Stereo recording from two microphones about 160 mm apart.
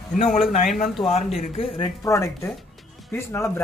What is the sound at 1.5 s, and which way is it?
Speech, 35° left (ahead or behind).